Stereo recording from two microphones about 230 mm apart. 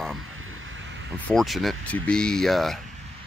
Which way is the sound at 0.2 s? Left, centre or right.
Right.